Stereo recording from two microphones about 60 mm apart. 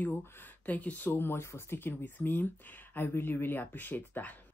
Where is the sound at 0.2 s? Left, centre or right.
Left.